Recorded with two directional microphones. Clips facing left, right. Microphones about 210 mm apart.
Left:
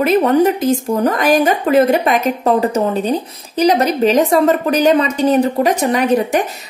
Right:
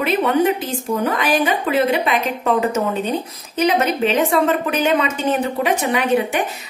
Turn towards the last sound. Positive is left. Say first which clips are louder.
# left 4 dB
turn(degrees=40)  # may be behind; listen again after turning